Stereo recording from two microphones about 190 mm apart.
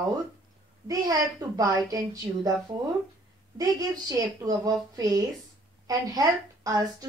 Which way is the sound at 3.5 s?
20° right (ahead or behind).